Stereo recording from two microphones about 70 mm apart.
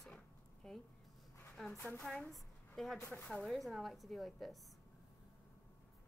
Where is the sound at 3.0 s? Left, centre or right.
Left.